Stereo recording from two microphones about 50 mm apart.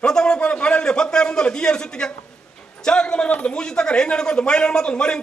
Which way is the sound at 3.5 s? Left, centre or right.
Centre.